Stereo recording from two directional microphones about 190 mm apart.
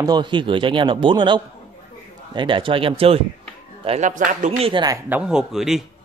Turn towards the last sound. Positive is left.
turn(degrees=0)  # may be behind; listen again after turning